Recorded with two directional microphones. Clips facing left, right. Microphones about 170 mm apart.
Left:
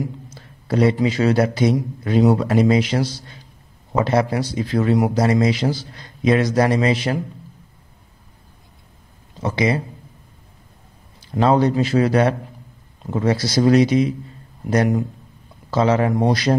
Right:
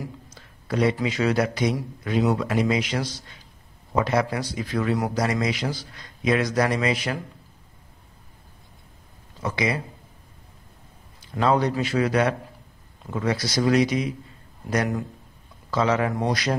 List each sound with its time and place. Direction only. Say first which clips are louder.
0.0 s a sound: left 8 dB; 30° left (ahead or behind)
1.0 s a man's voice: left 5 dB; 35° left (ahead or behind)
9.4 s a man's voice: left 6 dB; 30° left (ahead or behind)
11.3 s a man's voice: left 5 dB; 30° left (ahead or behind)